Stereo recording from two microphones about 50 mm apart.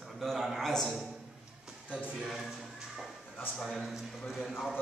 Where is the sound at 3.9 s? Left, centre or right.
Centre.